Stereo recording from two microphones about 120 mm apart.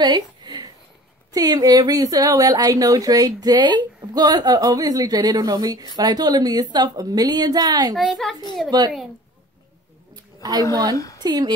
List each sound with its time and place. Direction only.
0.0 s a sound: 40° right (ahead or behind)
1.3 s speech: 30° right (ahead or behind)
7.9 s a child's voice: centre (ahead or behind)
8.6 s speech: 35° right (ahead or behind)
11.0 s a woman's voice: 25° left (ahead or behind)
11.2 s speech: 35° right (ahead or behind)